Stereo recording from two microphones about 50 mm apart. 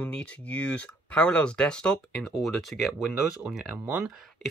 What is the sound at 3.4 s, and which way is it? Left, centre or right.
Speech, centre.